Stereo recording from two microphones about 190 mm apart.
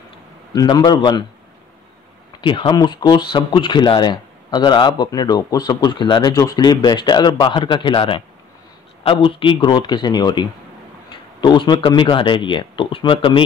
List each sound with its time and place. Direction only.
0.5 s speech: 20° left (ahead or behind)
2.4 s speech: 25° left (ahead or behind)
11.4 s speech: 25° left (ahead or behind)